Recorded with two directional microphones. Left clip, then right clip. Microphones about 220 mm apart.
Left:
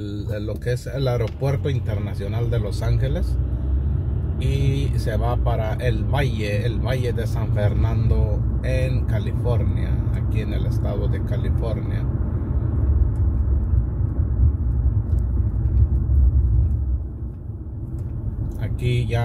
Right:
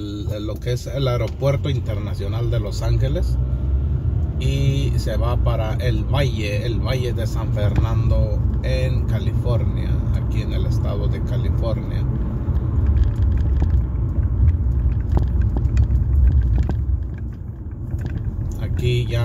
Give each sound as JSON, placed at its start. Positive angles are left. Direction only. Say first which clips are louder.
{"t": 0.7, "sound": "speech", "louder": "right 1 dB", "side_deg": 25}
{"t": 4.4, "sound": "speech", "louder": "right 1 dB", "side_deg": 25}
{"t": 18.8, "sound": "speech", "louder": "right 4 dB", "side_deg": 25}